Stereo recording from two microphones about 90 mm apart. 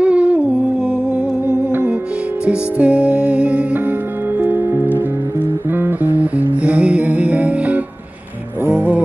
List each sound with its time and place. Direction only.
0.0 s humming: 15° right (ahead or behind)
1.7 s music: 20° right (ahead or behind)